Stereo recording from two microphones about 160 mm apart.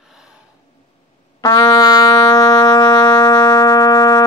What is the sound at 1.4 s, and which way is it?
Music, 25° left (ahead or behind).